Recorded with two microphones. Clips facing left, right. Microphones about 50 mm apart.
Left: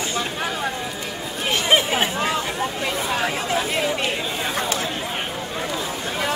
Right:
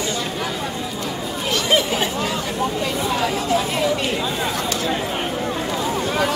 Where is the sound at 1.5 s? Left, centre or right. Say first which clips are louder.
Even; left.